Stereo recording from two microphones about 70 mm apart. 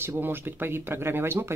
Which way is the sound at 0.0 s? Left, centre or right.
Right.